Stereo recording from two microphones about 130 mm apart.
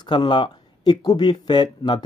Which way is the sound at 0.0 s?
35° left (ahead or behind).